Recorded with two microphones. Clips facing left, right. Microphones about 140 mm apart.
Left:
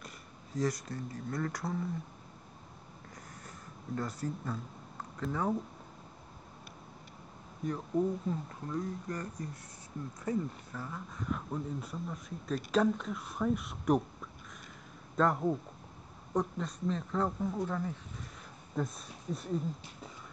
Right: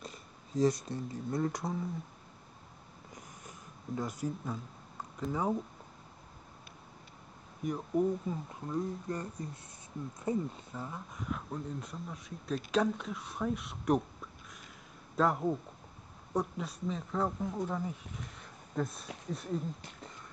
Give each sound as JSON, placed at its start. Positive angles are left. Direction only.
{"t": 0.6, "sound": "speech", "side_deg": -25}
{"t": 3.2, "sound": "a sound", "side_deg": -15}
{"t": 5.3, "sound": "speech", "side_deg": -15}
{"t": 7.6, "sound": "speech", "side_deg": -10}
{"t": 8.6, "sound": "speech", "side_deg": -25}
{"t": 11.2, "sound": "speech", "side_deg": 0}
{"t": 15.1, "sound": "speech", "side_deg": -5}
{"t": 18.8, "sound": "speech", "side_deg": 0}